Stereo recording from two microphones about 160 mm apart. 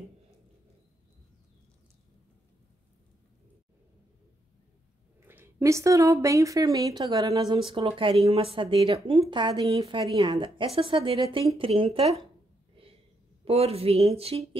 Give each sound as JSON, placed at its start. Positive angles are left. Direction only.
{"t": 5.2, "sound": "speech", "side_deg": -15}
{"t": 12.8, "sound": "a sound", "side_deg": -35}
{"t": 13.5, "sound": "speech", "side_deg": -40}